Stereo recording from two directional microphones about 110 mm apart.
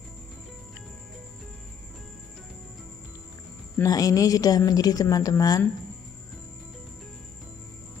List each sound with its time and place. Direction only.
3.8 s speech: 35° left (ahead or behind)